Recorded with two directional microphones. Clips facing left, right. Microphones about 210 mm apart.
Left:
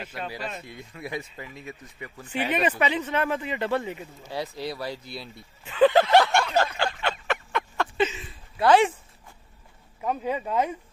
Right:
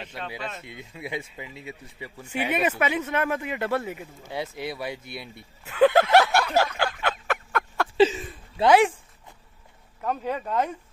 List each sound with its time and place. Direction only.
0.0 s speech: 5° left (ahead or behind)
0.7 s speech: 20° right (ahead or behind)
4.3 s speech: 20° right (ahead or behind)
5.7 s a sound: 10° right (ahead or behind)
6.8 s fowl: 5° right (ahead or behind)
8.0 s a sound: 35° right (ahead or behind)
8.6 s speech: 5° right (ahead or behind)
10.0 s speech: 10° left (ahead or behind)